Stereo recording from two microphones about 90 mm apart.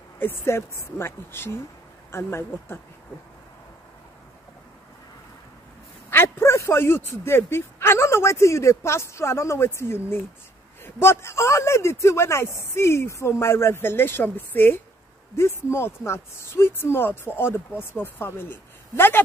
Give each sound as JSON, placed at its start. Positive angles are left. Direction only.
{"t": 0.2, "sound": "speech", "side_deg": 30}
{"t": 6.0, "sound": "speech", "side_deg": 25}